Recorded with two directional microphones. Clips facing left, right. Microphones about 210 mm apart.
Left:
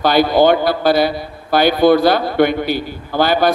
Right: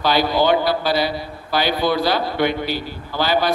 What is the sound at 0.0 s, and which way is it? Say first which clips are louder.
A man's voice: left 6 dB; 50° left (ahead or behind).